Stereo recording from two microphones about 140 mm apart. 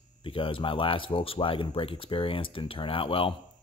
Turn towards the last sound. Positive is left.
turn(degrees=40)  # may be behind; listen again after turning